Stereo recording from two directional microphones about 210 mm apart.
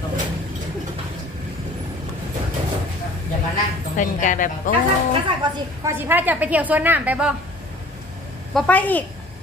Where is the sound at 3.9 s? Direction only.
40° left (ahead or behind).